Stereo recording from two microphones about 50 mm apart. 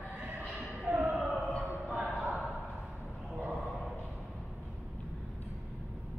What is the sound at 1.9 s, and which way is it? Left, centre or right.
Music, right.